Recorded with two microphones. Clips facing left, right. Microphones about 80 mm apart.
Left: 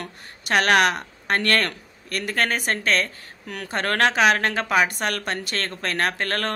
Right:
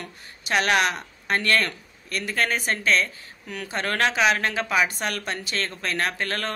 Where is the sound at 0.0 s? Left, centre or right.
Left.